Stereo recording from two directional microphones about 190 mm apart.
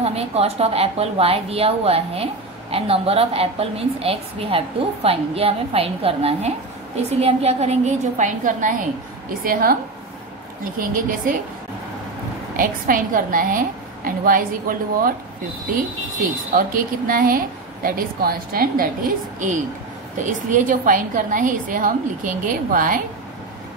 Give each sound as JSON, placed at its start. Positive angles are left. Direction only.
{"t": 0.0, "sound": "a woman's voice", "side_deg": -30}
{"t": 10.8, "sound": "a woman's voice", "side_deg": -45}
{"t": 12.5, "sound": "a woman's voice", "side_deg": -45}
{"t": 16.2, "sound": "a woman's voice", "side_deg": -50}
{"t": 20.2, "sound": "a woman's voice", "side_deg": -45}